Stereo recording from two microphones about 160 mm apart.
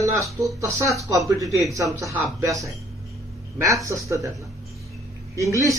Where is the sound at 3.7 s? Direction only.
20° right (ahead or behind).